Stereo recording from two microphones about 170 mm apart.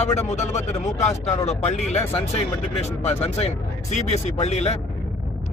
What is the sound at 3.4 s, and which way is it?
A man's voice, 40° left (ahead or behind).